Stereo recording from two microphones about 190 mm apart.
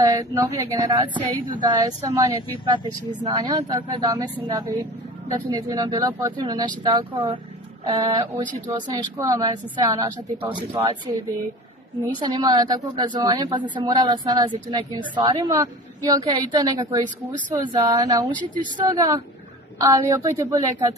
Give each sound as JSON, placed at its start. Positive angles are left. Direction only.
{"t": 0.0, "sound": "a woman's voice", "side_deg": -20}
{"t": 12.2, "sound": "a woman's voice", "side_deg": -20}